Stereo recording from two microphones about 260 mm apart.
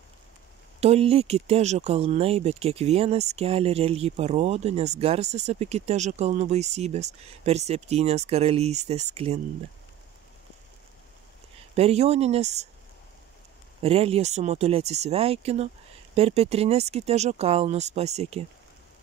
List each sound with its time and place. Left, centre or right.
0.7 s speech: right
11.7 s speech: right
13.8 s speech: right